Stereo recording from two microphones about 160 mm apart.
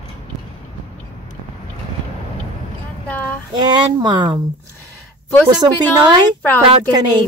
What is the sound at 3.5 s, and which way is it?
Speech, 25° right (ahead or behind).